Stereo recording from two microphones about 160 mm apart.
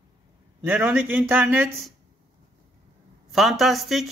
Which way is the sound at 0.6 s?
10° right (ahead or behind).